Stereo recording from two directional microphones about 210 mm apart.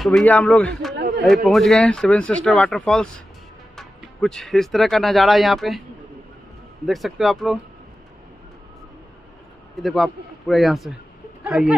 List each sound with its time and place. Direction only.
0.0 s speech: 5° left (ahead or behind)
0.9 s a man's voice: 55° right (ahead or behind)
1.2 s speech: centre (ahead or behind)
6.9 s speech: centre (ahead or behind)
9.8 s speech: centre (ahead or behind)